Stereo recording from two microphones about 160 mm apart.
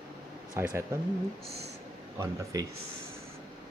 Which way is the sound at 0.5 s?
15° right (ahead or behind).